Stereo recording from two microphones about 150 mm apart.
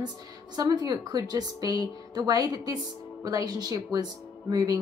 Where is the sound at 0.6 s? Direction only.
25° right (ahead or behind).